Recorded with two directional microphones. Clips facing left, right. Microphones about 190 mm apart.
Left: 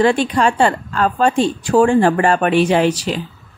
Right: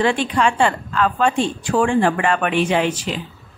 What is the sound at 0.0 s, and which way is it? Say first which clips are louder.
A woman's voice: left 4 dB; 40° left (ahead or behind).